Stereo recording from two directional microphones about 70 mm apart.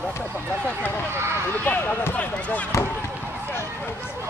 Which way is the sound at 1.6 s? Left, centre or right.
Left.